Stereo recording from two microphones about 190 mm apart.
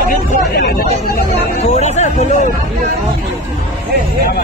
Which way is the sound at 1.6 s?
35° left (ahead or behind).